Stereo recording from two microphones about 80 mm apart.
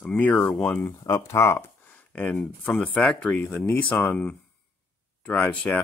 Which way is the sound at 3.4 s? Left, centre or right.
Left.